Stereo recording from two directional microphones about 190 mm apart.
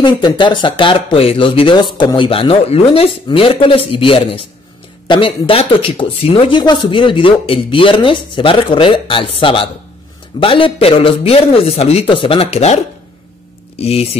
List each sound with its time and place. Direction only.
0.0 s speech: 25° left (ahead or behind)
13.7 s speech: 30° left (ahead or behind)